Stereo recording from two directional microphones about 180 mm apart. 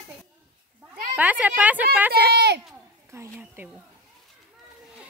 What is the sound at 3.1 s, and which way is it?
Speech, 15° right (ahead or behind).